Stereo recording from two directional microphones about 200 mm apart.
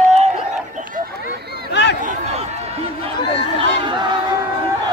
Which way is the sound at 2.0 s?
35° right (ahead or behind).